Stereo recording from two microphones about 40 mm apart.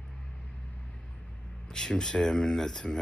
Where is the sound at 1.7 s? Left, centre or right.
Centre.